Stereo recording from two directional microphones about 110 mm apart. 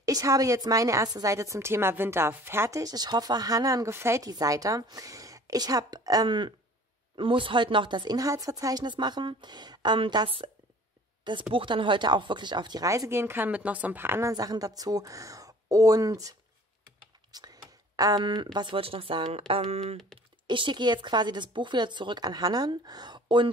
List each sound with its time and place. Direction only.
0.0 s a woman's voice: 30° right (ahead or behind); by 10.5 s 50° right (ahead or behind)
11.5 s a woman's voice: 50° right (ahead or behind)
12.8 s a woman's voice: 30° right (ahead or behind)
14.3 s speech: 35° right (ahead or behind); by 20.0 s 70° right (ahead or behind)
20.4 s a woman's voice: 45° right (ahead or behind)